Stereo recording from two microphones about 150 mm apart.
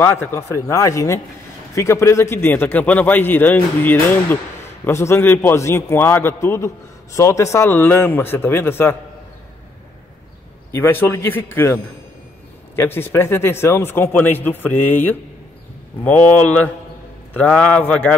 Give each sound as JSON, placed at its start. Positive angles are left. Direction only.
{"t": 0.0, "sound": "a man's voice", "side_deg": 15}
{"t": 10.7, "sound": "a man's voice", "side_deg": 15}